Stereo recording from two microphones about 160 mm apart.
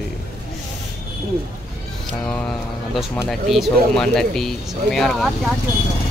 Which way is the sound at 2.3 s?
5° left (ahead or behind).